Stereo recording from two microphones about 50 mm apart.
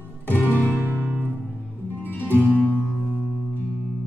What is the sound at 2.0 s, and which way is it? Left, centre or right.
Music, left.